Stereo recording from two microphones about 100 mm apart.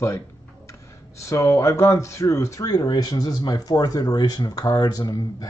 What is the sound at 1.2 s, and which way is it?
Speech, 30° left (ahead or behind).